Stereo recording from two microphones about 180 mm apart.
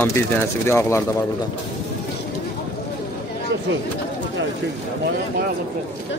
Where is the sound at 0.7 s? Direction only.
15° left (ahead or behind).